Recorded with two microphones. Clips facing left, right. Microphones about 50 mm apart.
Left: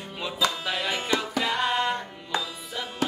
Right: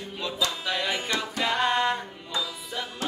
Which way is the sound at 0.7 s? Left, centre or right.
Centre.